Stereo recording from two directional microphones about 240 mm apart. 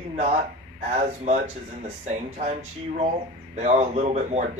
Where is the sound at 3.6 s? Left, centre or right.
Right.